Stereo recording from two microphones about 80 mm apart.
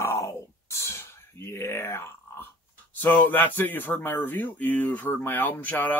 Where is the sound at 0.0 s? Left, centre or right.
Left.